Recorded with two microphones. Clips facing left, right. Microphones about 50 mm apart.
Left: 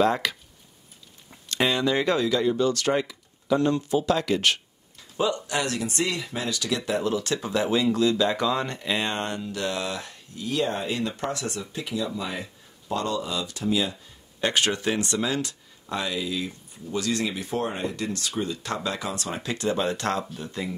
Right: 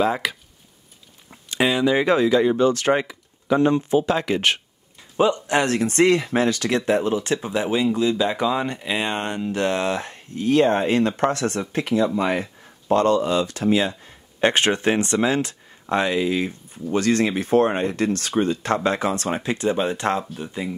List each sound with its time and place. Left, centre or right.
0.0 s speech: centre; by 6.8 s right
6.9 s speech: right